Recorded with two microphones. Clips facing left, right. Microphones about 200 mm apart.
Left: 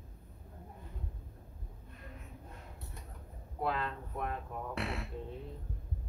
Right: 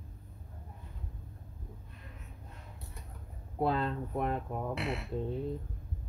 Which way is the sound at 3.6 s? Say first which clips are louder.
Right 5 dB; 30° right (ahead or behind).